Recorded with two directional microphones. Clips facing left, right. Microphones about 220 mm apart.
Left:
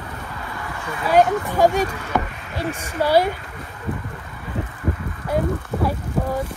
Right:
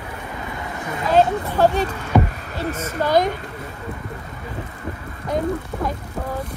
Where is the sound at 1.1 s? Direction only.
10° left (ahead or behind).